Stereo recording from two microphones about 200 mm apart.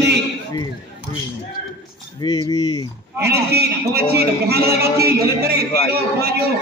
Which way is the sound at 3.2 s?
55° right (ahead or behind).